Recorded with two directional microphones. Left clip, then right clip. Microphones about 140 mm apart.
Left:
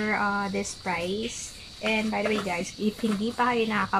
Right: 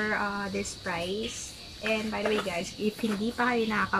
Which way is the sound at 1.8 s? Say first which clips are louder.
Left 3 dB; 10° left (ahead or behind).